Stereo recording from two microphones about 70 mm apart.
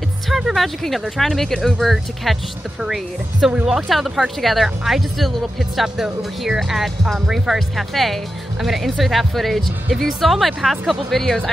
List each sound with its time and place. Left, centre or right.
0.3 s speech: centre